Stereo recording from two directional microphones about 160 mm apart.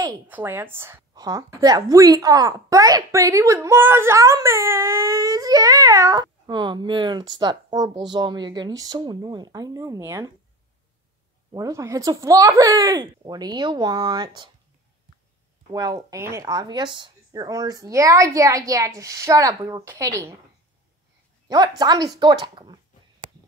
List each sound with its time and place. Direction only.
0.3 s a woman's voice: 15° right (ahead or behind)
11.5 s a woman's voice: 20° right (ahead or behind)
15.7 s a woman's voice: 25° right (ahead or behind)
21.5 s a woman's voice: 25° right (ahead or behind)